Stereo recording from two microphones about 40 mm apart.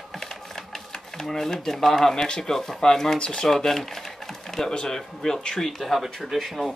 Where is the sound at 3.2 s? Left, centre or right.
Left.